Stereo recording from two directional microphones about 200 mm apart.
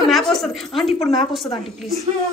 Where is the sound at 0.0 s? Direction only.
Centre (ahead or behind).